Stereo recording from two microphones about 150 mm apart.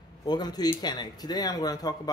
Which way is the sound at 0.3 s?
25° left (ahead or behind).